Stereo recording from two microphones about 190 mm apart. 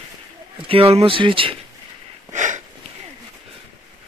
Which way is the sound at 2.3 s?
40° right (ahead or behind).